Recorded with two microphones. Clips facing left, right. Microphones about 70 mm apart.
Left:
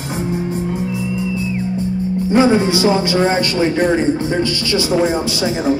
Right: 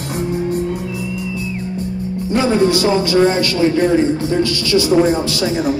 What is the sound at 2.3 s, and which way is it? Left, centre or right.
A man's voice, left.